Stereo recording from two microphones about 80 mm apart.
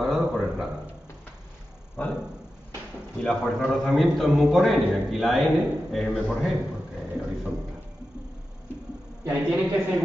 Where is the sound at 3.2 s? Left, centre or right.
Centre.